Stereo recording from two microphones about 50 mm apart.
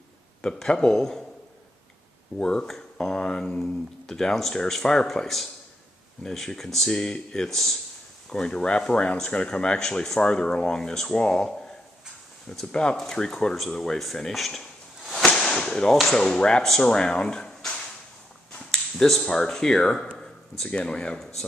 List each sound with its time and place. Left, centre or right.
0.4 s speech: centre
2.3 s speech: centre
8.3 s speech: centre
15.3 s whip: centre
16.1 s speech: centre
16.6 s speech: centre
16.9 s speech: centre
18.7 s finger snapping: centre
19.2 s speech: centre